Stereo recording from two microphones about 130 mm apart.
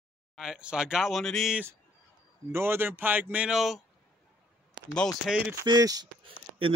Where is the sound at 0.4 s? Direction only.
5° right (ahead or behind).